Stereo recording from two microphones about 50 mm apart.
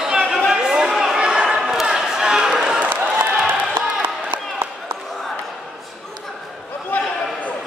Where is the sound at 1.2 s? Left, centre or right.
Centre.